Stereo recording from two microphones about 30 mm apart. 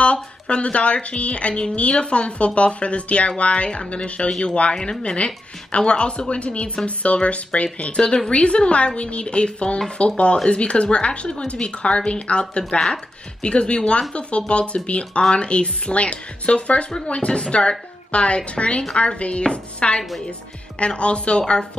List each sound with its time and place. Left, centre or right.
0.0 s speech: left